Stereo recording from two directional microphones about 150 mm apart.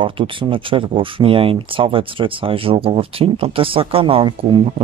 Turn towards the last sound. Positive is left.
turn(degrees=-35)  # may be behind; listen again after turning